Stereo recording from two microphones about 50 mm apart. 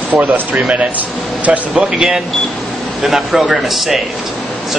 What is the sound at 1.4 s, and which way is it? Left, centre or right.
Speech, right.